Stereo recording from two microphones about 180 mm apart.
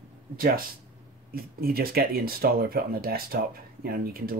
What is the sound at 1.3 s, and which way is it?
Speech, 55° right (ahead or behind).